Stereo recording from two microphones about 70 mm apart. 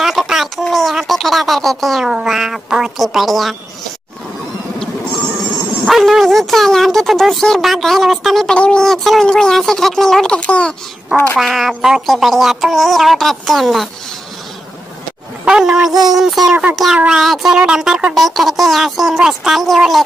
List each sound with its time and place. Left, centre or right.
0.0 s a sound: centre
2.1 s speech: centre
5.9 s speech: centre
11.3 s speech: centre
15.4 s speech: centre
15.9 s child singing: right
16.2 s speech: centre